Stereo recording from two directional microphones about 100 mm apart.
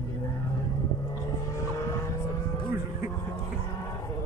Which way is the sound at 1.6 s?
30° left (ahead or behind).